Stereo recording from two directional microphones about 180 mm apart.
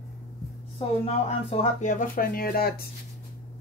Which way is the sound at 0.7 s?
35° left (ahead or behind).